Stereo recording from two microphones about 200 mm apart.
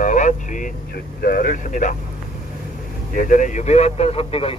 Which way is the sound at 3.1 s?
40° left (ahead or behind).